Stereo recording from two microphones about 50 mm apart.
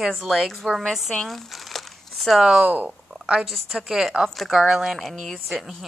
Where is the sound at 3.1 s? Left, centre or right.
Centre.